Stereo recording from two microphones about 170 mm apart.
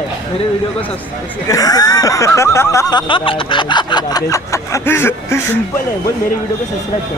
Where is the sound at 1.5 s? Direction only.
20° left (ahead or behind).